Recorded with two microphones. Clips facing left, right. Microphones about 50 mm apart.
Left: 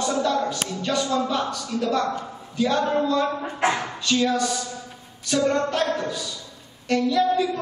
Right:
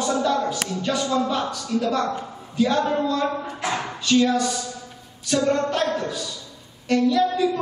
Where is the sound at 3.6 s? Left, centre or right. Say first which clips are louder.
Left 5 dB; left.